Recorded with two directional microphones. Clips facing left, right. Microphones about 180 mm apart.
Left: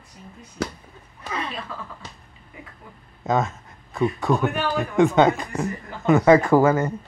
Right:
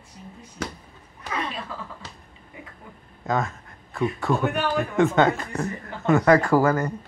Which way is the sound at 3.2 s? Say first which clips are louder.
Left 3 dB; 20° left (ahead or behind).